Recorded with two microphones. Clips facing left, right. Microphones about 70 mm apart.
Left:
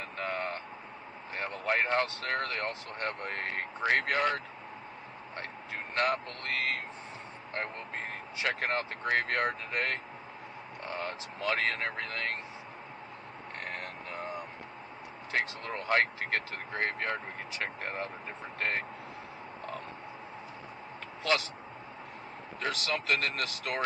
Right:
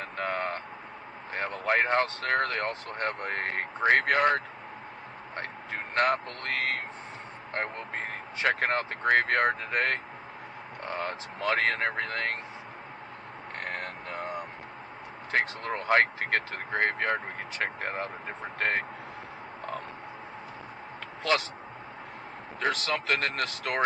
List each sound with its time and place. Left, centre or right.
0.0 s a sound: right
1.3 s speech: right
5.3 s vehicle: right
6.4 s speech: right
13.7 s frog: right
15.3 s speech: right
22.6 s speech: right